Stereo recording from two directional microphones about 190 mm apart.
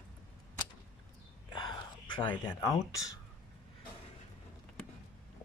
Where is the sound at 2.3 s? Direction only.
15° left (ahead or behind).